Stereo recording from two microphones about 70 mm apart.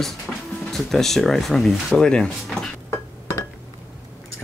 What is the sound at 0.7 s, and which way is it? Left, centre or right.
Speech, centre.